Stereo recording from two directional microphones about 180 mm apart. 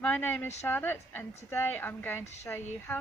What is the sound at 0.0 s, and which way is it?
A woman's voice, 10° left (ahead or behind).